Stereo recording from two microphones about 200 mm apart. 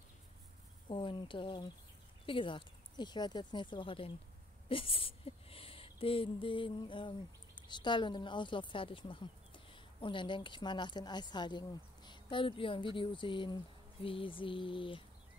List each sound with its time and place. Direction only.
0.8 s speech: 25° left (ahead or behind)